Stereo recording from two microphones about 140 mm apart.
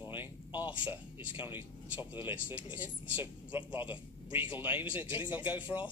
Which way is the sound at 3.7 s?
35° left (ahead or behind).